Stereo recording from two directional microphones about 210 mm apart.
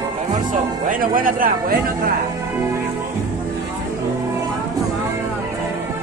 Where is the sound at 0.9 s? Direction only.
40° right (ahead or behind).